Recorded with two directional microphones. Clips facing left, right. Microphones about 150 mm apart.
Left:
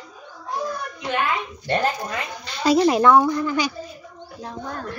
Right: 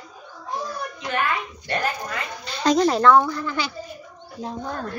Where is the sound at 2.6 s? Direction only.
10° left (ahead or behind).